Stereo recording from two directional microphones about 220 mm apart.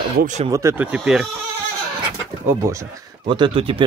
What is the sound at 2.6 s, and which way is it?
Speech, 15° right (ahead or behind).